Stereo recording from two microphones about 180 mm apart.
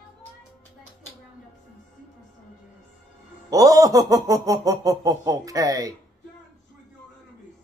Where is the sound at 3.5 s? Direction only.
20° right (ahead or behind).